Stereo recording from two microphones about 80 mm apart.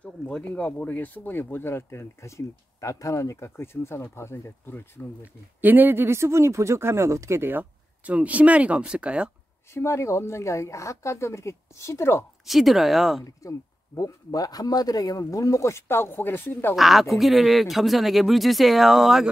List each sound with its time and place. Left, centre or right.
0.0 s speech: centre
5.2 s speech: right
9.8 s speech: left
12.4 s speech: centre
13.2 s a man's voice: left
16.7 s speech: centre